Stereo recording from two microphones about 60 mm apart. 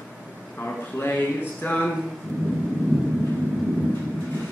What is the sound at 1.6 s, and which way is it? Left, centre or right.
Music, left.